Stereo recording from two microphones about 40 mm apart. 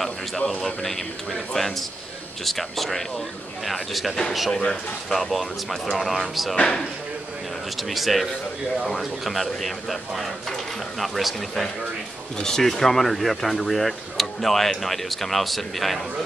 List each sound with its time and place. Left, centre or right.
1.5 s speech: centre
4.5 s speech: centre
5.1 s speech: centre
6.5 s speech: left
7.7 s speech: centre
12.4 s speech: centre